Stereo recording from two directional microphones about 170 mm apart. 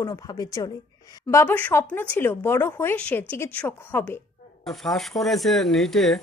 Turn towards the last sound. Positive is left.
turn(degrees=0)  # may be behind; listen again after turning